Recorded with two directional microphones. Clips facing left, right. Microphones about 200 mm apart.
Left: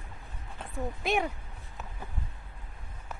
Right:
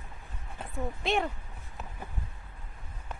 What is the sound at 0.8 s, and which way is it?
Speech, centre (ahead or behind).